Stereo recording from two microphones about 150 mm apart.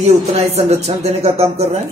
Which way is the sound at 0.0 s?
45° right (ahead or behind).